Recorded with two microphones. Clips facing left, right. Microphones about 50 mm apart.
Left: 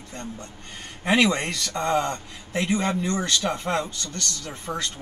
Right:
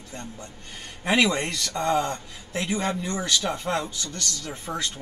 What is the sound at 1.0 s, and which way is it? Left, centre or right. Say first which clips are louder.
Speech: left 1 dB; centre.